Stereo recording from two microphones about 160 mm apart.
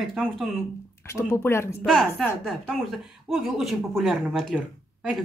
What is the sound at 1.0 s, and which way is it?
Speech, 15° left (ahead or behind).